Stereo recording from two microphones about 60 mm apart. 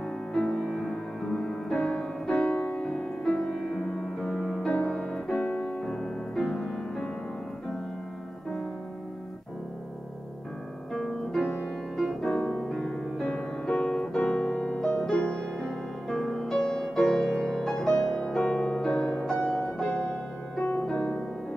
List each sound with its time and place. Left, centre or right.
0.3 s music: centre
4.6 s music: centre
5.9 s music: centre
10.9 s piano: centre
12.4 s piano: centre
12.6 s music: centre
20.1 s music: left